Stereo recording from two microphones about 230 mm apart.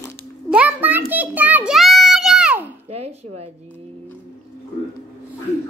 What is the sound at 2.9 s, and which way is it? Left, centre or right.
Speech, right.